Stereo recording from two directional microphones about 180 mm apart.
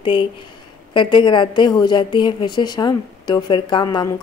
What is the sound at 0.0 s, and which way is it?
A woman's voice, 30° left (ahead or behind).